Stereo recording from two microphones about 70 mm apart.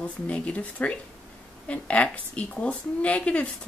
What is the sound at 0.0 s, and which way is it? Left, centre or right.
A woman's voice, centre.